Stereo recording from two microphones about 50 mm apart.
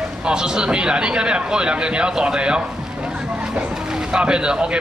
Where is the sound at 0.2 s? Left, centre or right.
Centre.